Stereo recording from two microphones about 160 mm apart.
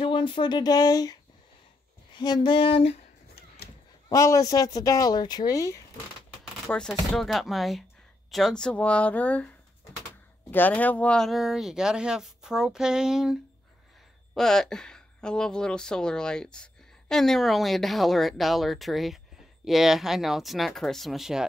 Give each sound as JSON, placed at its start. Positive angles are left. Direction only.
{"t": 0.0, "sound": "speech", "side_deg": 30}
{"t": 2.1, "sound": "a sound", "side_deg": 25}
{"t": 4.1, "sound": "speech", "side_deg": 20}
{"t": 6.7, "sound": "speech", "side_deg": 5}
{"t": 10.5, "sound": "speech", "side_deg": 10}